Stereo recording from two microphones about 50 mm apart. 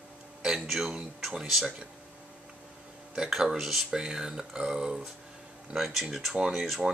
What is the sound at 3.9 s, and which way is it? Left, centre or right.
Speech, centre.